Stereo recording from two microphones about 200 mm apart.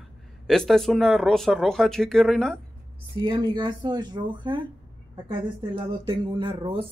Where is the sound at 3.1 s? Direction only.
25° right (ahead or behind).